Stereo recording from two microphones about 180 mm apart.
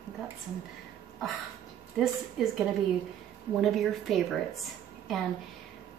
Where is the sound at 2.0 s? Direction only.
Centre (ahead or behind).